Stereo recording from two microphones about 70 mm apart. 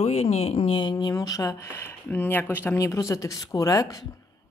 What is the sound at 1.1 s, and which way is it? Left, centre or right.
Speech, left.